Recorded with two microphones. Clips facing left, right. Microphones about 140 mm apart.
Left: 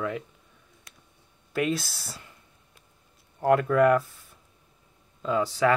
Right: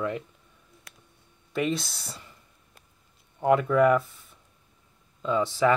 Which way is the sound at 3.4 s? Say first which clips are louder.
Even; centre (ahead or behind).